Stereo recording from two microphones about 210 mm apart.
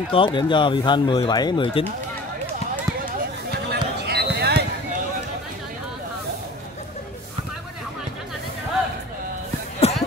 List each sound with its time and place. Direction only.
0.1 s speech: 25° left (ahead or behind)
3.7 s basketball bounce: 50° right (ahead or behind)
9.8 s music: 30° left (ahead or behind)